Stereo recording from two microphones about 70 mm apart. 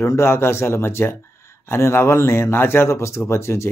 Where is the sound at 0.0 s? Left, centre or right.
Left.